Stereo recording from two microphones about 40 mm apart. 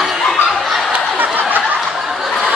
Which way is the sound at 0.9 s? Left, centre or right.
Right.